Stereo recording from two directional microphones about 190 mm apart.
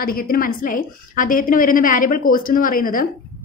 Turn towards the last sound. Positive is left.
turn(degrees=45)  # may be behind; listen again after turning